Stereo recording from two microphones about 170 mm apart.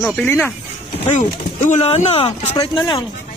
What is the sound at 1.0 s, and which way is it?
Speech, 40° left (ahead or behind).